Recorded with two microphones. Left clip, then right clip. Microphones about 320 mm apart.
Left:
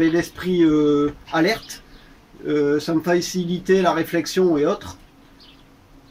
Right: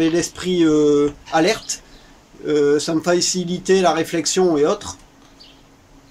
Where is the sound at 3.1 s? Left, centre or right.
Right.